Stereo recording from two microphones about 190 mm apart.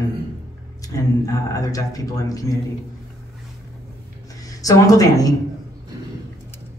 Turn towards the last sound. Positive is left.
turn(degrees=20)  # may be behind; listen again after turning